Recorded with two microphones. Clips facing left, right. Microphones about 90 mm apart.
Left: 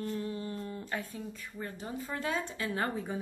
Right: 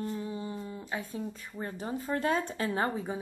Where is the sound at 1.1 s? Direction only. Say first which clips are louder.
Right 4 dB; 30° right (ahead or behind).